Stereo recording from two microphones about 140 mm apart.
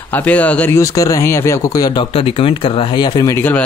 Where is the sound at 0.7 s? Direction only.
25° left (ahead or behind).